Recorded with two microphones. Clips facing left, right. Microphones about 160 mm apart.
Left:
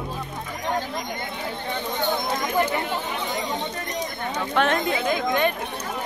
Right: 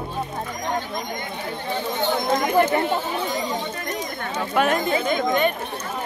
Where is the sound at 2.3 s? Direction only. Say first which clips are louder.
Right 8 dB; 50° right (ahead or behind).